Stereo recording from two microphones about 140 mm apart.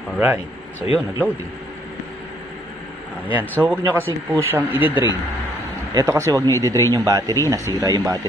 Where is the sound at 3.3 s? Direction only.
15° right (ahead or behind).